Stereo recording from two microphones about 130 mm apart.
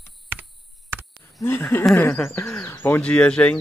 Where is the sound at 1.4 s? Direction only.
15° left (ahead or behind).